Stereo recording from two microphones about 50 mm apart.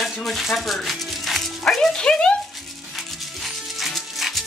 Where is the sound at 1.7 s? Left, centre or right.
Centre.